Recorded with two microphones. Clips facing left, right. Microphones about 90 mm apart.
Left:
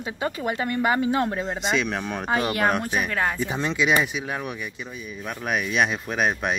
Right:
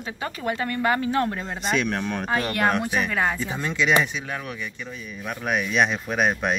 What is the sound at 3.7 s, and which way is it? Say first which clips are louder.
Speech: right 1 dB; 10° left (ahead or behind).